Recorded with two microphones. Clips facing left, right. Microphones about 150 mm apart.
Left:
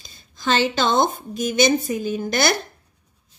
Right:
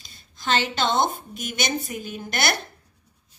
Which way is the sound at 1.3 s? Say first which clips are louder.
Left 10 dB; 90° left.